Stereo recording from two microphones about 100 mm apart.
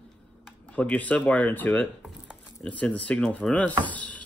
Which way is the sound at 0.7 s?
15° left (ahead or behind).